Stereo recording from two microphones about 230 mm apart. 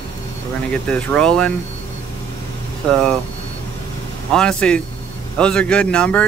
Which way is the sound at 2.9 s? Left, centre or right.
Centre.